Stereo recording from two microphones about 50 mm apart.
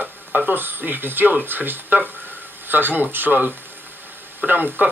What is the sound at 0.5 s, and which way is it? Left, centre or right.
Speech, right.